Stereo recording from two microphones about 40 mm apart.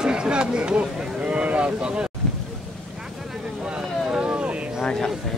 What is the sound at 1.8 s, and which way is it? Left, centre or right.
Boat, right.